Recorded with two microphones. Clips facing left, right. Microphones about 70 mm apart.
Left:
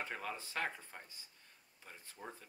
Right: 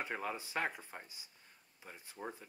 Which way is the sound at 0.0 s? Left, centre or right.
Centre.